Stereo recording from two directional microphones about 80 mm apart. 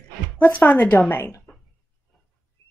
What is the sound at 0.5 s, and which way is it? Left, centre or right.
Speech, centre.